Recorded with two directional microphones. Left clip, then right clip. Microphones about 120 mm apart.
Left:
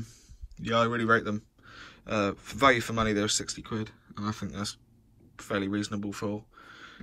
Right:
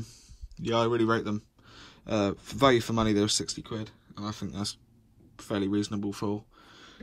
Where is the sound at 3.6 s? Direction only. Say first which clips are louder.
Left 2 dB; 10° right (ahead or behind).